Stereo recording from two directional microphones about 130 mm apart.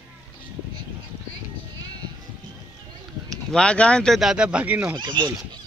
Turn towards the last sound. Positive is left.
turn(degrees=-35)  # may be behind; listen again after turning